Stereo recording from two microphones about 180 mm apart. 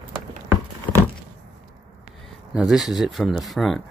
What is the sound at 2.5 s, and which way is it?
Speech, 5° right (ahead or behind).